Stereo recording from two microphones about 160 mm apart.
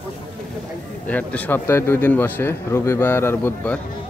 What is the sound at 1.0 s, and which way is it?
A man's voice, 10° left (ahead or behind).